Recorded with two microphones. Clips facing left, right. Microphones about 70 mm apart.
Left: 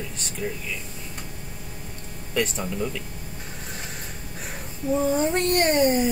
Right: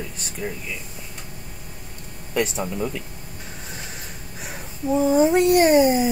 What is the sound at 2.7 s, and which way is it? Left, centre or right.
Speech, centre.